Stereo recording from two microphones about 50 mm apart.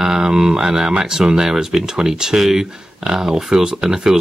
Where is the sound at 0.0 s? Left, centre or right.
Centre.